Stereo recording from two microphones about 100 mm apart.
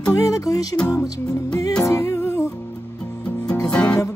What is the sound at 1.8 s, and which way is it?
Music, 30° left (ahead or behind).